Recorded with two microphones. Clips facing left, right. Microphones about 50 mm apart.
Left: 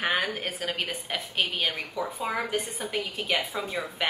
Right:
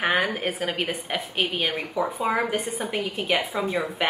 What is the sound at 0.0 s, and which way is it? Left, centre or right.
A woman's voice, right.